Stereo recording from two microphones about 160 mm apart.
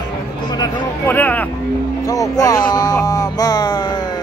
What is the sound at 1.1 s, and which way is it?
Vehicle, 10° left (ahead or behind).